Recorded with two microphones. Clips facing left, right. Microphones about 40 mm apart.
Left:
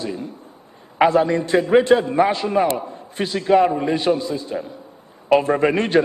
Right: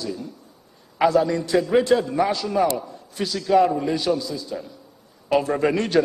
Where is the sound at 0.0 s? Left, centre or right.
Left.